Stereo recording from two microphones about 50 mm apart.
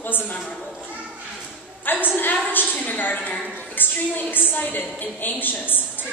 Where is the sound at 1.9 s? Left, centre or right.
Left.